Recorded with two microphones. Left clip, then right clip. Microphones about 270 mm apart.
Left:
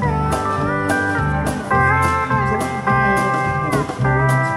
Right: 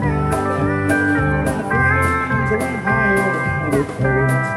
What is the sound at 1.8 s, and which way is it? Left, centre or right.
Music, centre.